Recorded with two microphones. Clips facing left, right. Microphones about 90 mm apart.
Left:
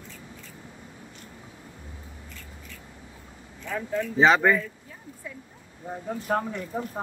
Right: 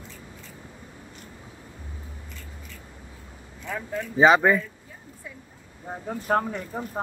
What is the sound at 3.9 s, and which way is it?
Speech, 10° right (ahead or behind).